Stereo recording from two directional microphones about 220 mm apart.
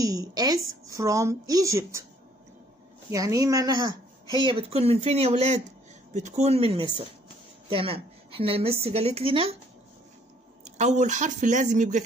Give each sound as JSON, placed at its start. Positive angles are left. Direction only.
{"t": 0.0, "sound": "a woman's voice", "side_deg": -15}
{"t": 3.1, "sound": "a woman's voice", "side_deg": -15}
{"t": 10.6, "sound": "speech", "side_deg": -30}